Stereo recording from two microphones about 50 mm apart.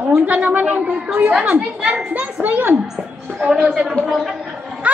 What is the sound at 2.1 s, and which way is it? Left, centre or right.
Children playing, right.